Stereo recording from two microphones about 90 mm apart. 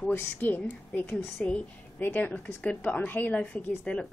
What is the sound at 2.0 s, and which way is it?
A woman's voice, 20° left (ahead or behind).